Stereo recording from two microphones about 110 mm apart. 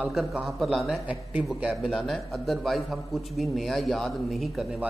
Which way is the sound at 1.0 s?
10° right (ahead or behind).